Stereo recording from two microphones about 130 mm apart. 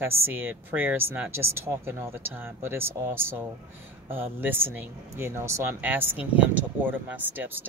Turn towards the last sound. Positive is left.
turn(degrees=-15)  # may be behind; listen again after turning